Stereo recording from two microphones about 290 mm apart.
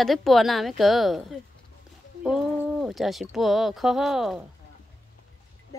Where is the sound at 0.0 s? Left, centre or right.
Centre.